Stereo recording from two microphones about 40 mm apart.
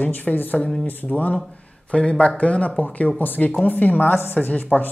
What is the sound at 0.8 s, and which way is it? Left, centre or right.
Speech, left.